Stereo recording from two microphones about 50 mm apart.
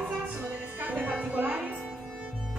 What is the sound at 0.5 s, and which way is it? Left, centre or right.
Music, right.